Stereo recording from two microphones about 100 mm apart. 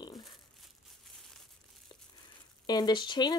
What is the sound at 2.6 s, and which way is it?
Speech, 45° left (ahead or behind).